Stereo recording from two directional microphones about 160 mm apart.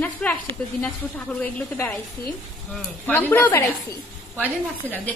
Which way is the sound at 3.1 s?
10° left (ahead or behind).